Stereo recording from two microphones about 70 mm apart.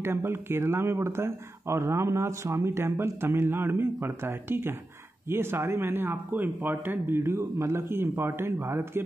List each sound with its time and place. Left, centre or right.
0.0 s speech: right